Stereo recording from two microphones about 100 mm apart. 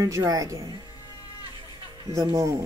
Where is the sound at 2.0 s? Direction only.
35° right (ahead or behind).